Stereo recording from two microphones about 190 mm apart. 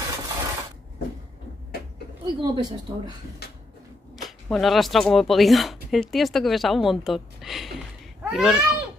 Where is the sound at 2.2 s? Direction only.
20° right (ahead or behind).